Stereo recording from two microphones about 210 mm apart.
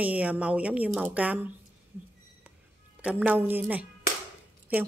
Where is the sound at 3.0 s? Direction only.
5° right (ahead or behind).